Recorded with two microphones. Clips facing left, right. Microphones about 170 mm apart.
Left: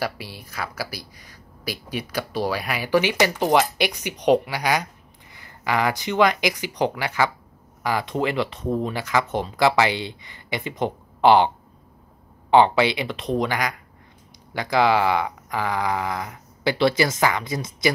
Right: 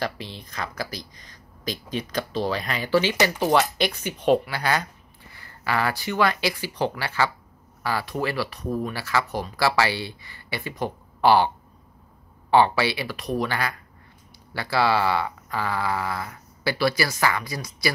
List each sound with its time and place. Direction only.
0.0 s speech: 10° left (ahead or behind)